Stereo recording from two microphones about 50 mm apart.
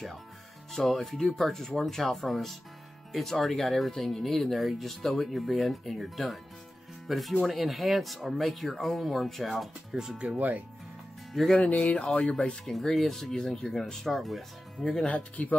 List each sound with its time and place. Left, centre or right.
0.7 s speech: centre
10.1 s speech: right
11.5 s speech: left
12.6 s speech: centre
14.9 s speech: left